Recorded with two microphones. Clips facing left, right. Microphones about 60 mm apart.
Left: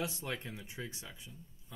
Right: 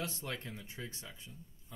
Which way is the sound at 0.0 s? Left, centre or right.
Centre.